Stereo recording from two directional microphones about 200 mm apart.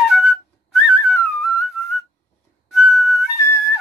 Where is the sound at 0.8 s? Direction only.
Centre (ahead or behind).